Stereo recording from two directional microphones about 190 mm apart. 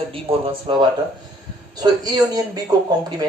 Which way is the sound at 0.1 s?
30° right (ahead or behind).